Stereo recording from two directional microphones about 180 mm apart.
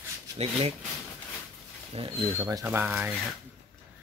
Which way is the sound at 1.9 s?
30° right (ahead or behind).